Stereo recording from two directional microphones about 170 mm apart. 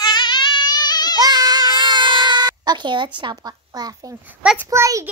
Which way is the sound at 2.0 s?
25° right (ahead or behind).